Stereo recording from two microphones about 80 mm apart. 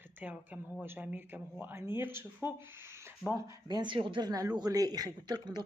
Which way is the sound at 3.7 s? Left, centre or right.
Right.